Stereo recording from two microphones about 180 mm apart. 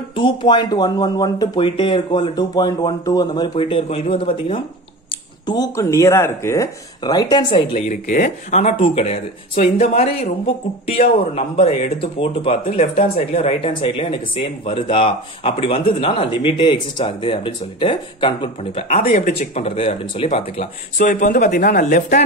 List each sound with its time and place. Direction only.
0.1 s speech: 25° left (ahead or behind)
5.5 s speech: 20° left (ahead or behind); by 19.3 s 45° left (ahead or behind)
19.3 s speech: 35° left (ahead or behind)
21.1 s speech: 50° left (ahead or behind)